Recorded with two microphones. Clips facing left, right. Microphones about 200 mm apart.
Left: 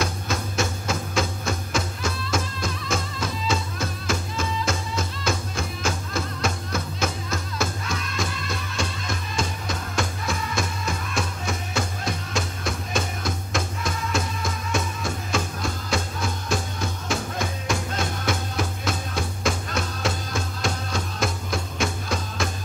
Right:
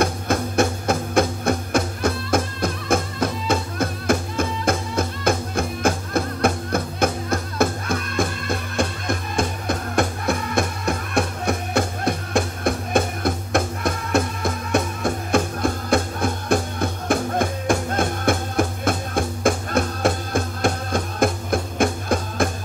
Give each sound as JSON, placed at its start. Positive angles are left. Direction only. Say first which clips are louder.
{"t": 0.0, "sound": "music", "louder": "right 6 dB", "side_deg": -55}